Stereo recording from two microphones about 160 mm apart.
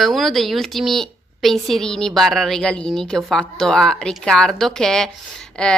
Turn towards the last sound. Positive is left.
turn(degrees=5)  # may be behind; listen again after turning